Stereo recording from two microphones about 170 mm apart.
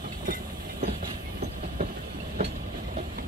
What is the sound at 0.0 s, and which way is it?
Vehicle, 55° right (ahead or behind).